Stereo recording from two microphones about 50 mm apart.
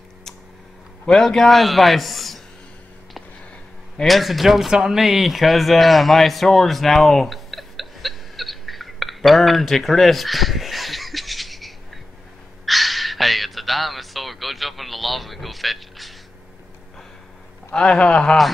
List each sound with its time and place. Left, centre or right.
1.0 s a man's voice: centre
4.0 s a sound: centre
17.7 s a man's voice: centre